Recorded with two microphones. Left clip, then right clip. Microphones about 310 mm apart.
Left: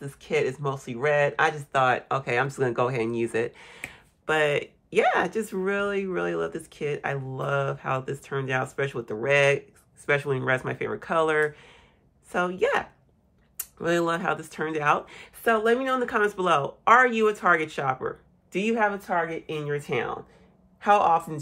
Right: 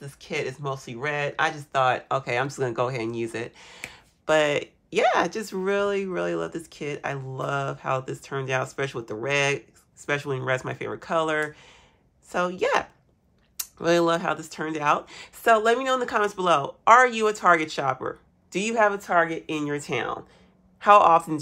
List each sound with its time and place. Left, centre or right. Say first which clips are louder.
0.0 s speech: left 4 dB; centre